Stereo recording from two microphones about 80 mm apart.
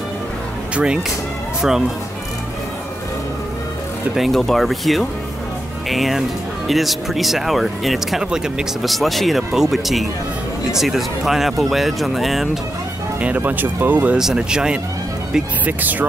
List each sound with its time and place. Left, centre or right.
0.7 s speech: centre
4.1 s speech: centre
8.9 s speech: centre
13.2 s speech: centre
14.1 s speech: centre
15.6 s speech: right